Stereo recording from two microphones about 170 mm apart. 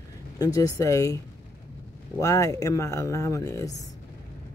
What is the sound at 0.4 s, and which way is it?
Speech, 20° left (ahead or behind).